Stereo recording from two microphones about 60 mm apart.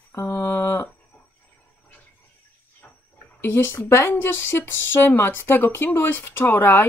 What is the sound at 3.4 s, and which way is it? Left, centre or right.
Speech, left.